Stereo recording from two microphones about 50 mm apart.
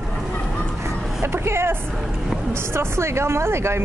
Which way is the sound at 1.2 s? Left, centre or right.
Right.